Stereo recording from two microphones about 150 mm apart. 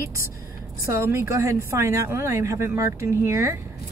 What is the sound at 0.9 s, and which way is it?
A woman's voice, 20° right (ahead or behind).